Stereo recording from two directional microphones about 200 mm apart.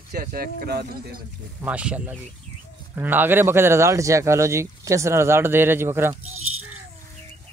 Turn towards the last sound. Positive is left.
turn(degrees=-90)